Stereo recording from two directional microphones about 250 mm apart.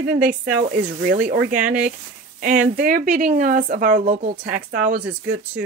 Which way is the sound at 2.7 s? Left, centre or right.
Right.